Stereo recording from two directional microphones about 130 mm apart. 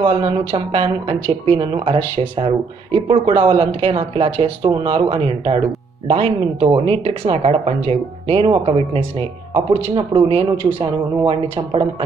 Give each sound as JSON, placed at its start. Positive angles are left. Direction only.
{"t": 0.0, "sound": "speech", "side_deg": -45}